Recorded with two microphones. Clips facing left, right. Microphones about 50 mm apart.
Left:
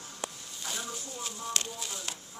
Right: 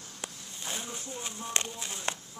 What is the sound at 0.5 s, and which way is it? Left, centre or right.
Speech, right.